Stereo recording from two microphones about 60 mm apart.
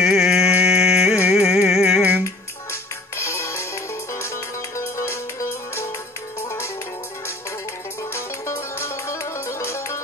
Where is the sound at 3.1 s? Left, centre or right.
Left.